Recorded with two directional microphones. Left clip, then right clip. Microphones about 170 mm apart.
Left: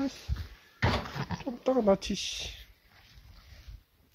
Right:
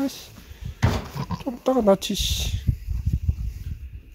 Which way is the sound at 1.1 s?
10° right (ahead or behind).